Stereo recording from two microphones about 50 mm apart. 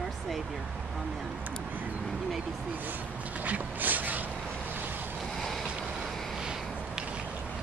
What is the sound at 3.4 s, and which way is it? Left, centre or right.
Speech, right.